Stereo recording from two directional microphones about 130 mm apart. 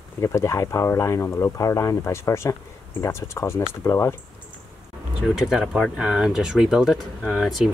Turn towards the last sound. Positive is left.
turn(degrees=0)  # may be behind; listen again after turning